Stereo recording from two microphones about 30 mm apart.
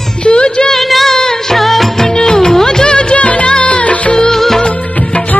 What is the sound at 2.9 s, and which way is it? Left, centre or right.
Music, left.